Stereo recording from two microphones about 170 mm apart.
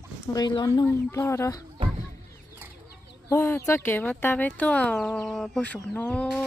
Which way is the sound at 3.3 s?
15° left (ahead or behind).